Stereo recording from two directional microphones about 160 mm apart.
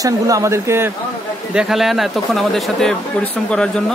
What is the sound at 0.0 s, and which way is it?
Speech, 20° right (ahead or behind).